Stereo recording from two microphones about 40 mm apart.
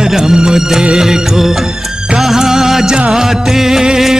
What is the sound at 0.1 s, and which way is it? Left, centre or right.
Music, centre.